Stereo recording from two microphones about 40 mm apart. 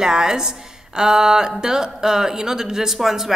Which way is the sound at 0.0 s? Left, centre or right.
Centre.